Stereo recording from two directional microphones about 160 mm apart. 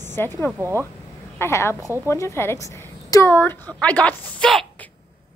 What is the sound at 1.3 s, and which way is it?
A woman's voice, 15° left (ahead or behind).